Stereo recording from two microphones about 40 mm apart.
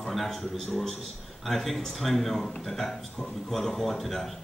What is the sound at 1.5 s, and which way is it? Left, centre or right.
A man's voice, centre.